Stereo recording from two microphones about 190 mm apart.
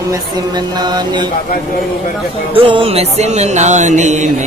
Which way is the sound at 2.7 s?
30° right (ahead or behind).